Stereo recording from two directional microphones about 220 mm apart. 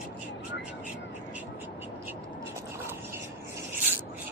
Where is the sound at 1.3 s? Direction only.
10° right (ahead or behind).